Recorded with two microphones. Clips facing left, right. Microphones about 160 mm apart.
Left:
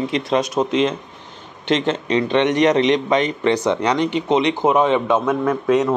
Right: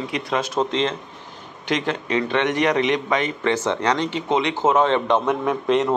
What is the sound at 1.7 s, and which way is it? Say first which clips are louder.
A man's voice: left 4 dB; 25° left (ahead or behind).